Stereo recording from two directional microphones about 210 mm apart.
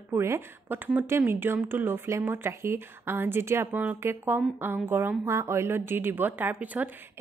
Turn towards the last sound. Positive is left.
turn(degrees=-10)  # may be behind; listen again after turning